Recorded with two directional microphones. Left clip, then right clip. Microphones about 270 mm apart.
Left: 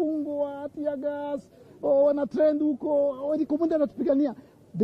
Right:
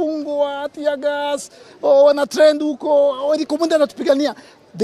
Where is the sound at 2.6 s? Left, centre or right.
Right.